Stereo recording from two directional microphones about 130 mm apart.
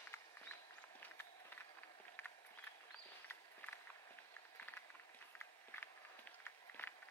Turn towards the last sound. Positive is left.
turn(degrees=20)  # may be behind; listen again after turning